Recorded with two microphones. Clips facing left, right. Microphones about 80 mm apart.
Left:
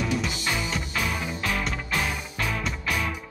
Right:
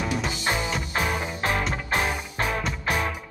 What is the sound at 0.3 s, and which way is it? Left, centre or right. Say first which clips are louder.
Music: right 2 dB; right.